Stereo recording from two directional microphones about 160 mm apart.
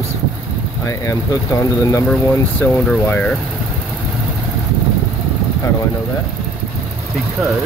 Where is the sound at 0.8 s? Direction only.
20° left (ahead or behind).